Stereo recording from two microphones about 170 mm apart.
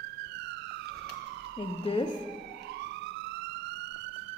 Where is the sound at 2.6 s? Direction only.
90° right.